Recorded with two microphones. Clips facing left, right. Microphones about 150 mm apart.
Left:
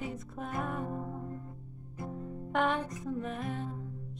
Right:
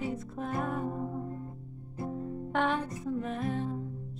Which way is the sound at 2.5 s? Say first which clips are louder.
Even; centre (ahead or behind).